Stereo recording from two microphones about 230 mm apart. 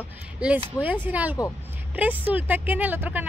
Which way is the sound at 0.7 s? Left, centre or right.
Centre.